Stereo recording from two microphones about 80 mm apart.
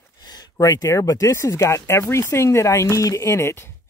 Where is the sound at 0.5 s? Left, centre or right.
Left.